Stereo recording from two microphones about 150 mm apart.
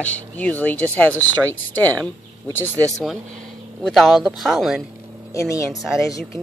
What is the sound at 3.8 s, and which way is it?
Speech, centre (ahead or behind).